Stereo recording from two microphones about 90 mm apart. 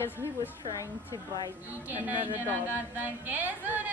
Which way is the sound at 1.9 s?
20° right (ahead or behind).